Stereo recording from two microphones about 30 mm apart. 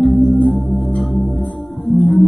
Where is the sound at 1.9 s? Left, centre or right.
Left.